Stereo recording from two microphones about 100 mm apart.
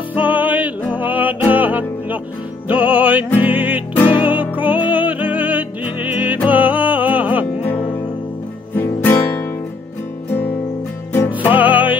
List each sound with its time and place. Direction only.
0.1 s music: 15° right (ahead or behind)
8.7 s music: 20° left (ahead or behind)
11.5 s music: 15° right (ahead or behind)